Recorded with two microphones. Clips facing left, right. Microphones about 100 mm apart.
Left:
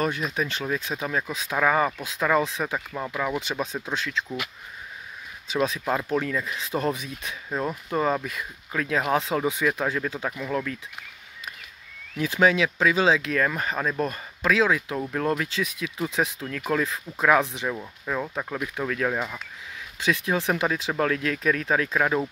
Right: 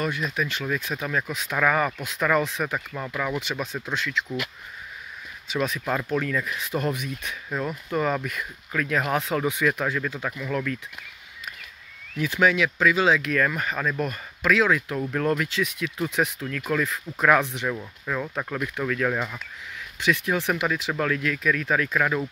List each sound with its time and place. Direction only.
0.0 s speech: 35° left (ahead or behind); by 4.1 s 15° left (ahead or behind)
5.5 s speech: 25° left (ahead or behind)
12.2 s speech: 30° left (ahead or behind); by 19.4 s 10° left (ahead or behind)
20.1 s speech: 20° left (ahead or behind)
21.6 s speech: 25° left (ahead or behind)